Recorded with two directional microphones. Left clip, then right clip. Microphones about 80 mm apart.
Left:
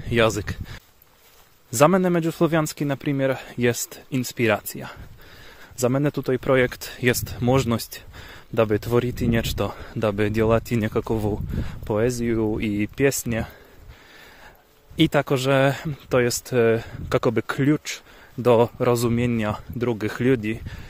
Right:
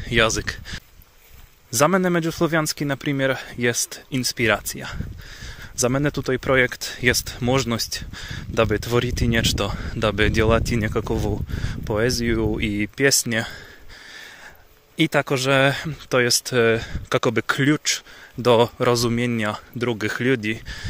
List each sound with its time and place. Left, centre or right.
0.0 s a man's voice: left
2.0 s speech: left
3.5 s speech: left
8.2 s speech: left
10.0 s speech: left
11.6 s speech: left
12.5 s speech: left
15.0 s speech: left
15.2 s speech: left
17.3 s speech: left
17.8 s speech: left
18.5 s speech: centre
19.1 s speech: left